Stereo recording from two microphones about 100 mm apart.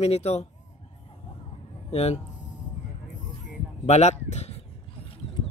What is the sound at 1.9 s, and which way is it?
Speech, 90° left.